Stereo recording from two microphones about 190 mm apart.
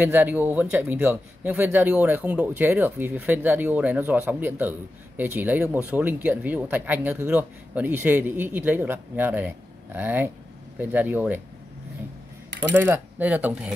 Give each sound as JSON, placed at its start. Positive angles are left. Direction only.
{"t": 0.0, "sound": "speech", "side_deg": -10}
{"t": 12.7, "sound": "speech", "side_deg": -10}